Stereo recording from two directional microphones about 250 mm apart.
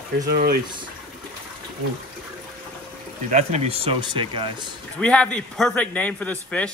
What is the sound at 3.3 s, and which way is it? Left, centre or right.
Speech, right.